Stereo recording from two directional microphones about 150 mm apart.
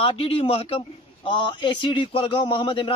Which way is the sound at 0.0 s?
40° left (ahead or behind).